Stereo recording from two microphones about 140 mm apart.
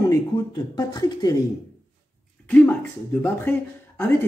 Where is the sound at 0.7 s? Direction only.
30° left (ahead or behind).